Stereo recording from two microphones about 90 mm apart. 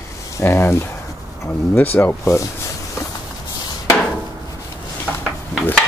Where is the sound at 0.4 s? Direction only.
30° left (ahead or behind).